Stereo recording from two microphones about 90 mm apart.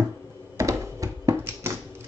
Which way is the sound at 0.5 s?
35° right (ahead or behind).